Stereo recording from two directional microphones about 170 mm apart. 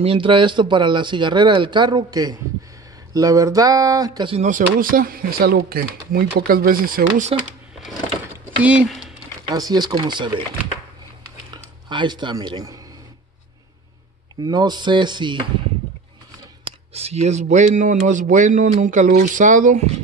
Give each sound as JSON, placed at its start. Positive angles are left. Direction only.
{"t": 0.0, "sound": "speech", "side_deg": -30}
{"t": 4.4, "sound": "speech", "side_deg": -50}
{"t": 8.5, "sound": "speech", "side_deg": -10}
{"t": 9.5, "sound": "speech", "side_deg": -25}
{"t": 11.5, "sound": "speech", "side_deg": -25}
{"t": 14.4, "sound": "speech", "side_deg": -25}
{"t": 16.6, "sound": "speech", "side_deg": -35}